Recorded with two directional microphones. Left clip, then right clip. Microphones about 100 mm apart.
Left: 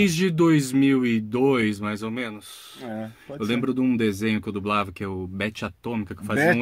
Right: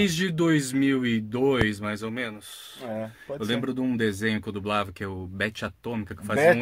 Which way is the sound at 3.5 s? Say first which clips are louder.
Left 4 dB; 10° left (ahead or behind).